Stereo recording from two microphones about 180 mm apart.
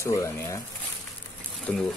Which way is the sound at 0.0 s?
15° left (ahead or behind).